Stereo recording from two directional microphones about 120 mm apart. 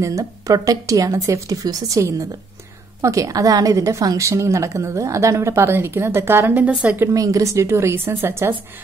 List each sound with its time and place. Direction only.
0.0 s a woman's voice: 25° right (ahead or behind); by 7.1 s 10° right (ahead or behind)
7.2 s a woman's voice: 30° right (ahead or behind)